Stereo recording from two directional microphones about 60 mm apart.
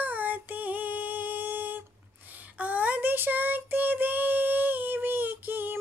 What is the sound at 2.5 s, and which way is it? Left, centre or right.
Child singing, right.